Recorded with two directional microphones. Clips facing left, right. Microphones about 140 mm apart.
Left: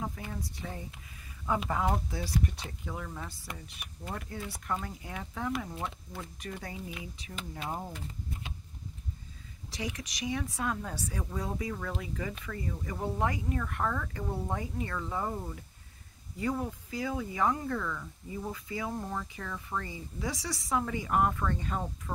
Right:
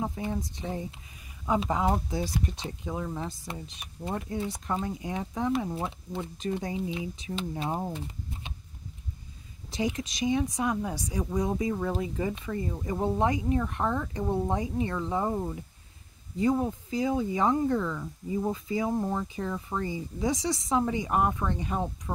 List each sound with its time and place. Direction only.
0.0 s speech: 25° right (ahead or behind)
9.7 s speech: 25° right (ahead or behind)